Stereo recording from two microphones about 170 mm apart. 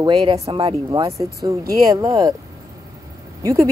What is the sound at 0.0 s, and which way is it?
Speech, 30° right (ahead or behind).